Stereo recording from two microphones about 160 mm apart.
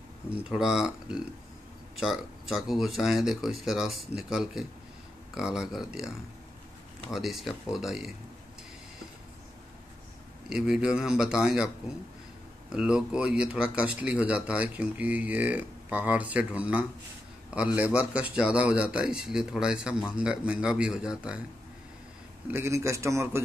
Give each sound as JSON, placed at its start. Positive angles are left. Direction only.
{"t": 0.3, "sound": "a man's voice", "side_deg": -5}
{"t": 10.5, "sound": "a man's voice", "side_deg": -5}
{"t": 12.7, "sound": "a man's voice", "side_deg": -5}
{"t": 22.5, "sound": "speech", "side_deg": -15}